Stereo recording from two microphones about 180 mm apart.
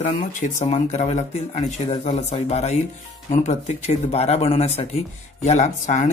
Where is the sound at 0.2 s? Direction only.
45° left (ahead or behind).